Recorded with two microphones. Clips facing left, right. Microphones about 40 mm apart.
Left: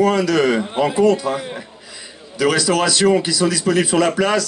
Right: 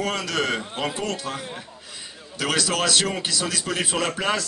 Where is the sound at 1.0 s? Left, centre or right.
Centre.